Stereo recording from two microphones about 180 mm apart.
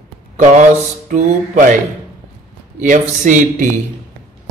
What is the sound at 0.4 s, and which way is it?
A man's voice, 40° right (ahead or behind).